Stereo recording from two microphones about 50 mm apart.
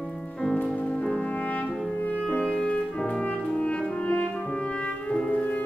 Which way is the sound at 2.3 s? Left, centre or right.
Left.